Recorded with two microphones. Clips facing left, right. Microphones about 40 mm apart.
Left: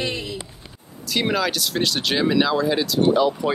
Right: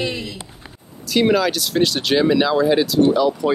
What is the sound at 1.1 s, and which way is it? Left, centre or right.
Speech, centre.